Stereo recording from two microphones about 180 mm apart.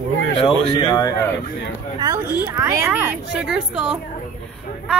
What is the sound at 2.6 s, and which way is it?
A woman's voice, 15° right (ahead or behind).